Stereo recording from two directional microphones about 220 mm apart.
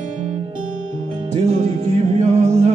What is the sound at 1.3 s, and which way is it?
Music, 30° right (ahead or behind).